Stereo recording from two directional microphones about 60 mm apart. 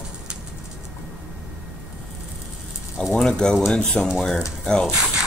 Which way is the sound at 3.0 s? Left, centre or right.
Centre.